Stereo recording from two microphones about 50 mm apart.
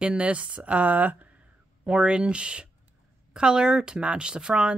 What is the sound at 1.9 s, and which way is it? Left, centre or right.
Speech, right.